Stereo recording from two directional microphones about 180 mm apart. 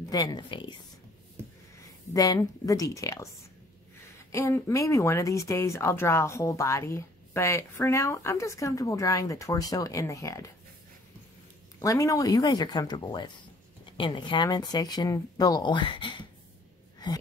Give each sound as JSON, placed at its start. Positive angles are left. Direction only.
{"t": 0.1, "sound": "speech", "side_deg": 20}
{"t": 2.1, "sound": "speech", "side_deg": 20}
{"t": 4.3, "sound": "speech", "side_deg": 15}
{"t": 11.8, "sound": "speech", "side_deg": 20}